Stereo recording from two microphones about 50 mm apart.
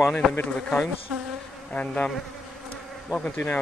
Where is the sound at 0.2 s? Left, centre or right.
Centre.